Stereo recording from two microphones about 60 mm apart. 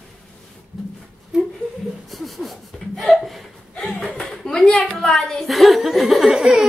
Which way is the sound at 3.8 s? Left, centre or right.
Centre.